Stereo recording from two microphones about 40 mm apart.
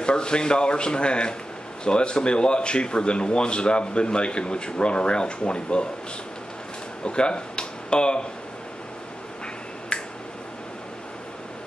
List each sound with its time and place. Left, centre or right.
0.0 s speech: left
7.1 s speech: left
9.9 s finger snapping: left